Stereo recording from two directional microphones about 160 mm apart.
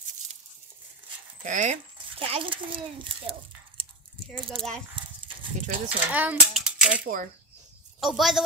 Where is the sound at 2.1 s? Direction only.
35° right (ahead or behind).